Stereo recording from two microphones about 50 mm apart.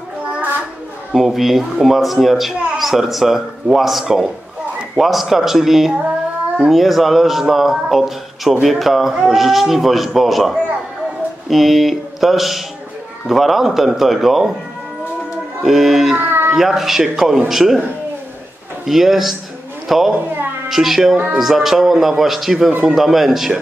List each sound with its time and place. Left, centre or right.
0.2 s a sound: right
1.1 s speech: centre
15.6 s speech: centre
16.2 s a sound: right
16.5 s speech: centre
18.9 s speech: centre